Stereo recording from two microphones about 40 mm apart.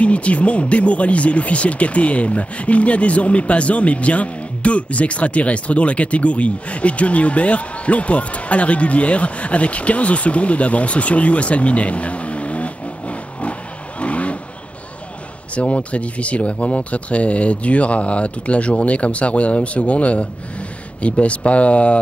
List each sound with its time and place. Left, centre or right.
0.0 s speech: left
15.5 s speech: left